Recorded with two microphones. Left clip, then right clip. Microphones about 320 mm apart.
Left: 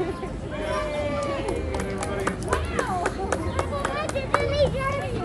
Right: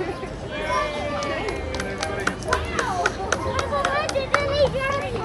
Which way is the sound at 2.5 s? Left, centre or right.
Left.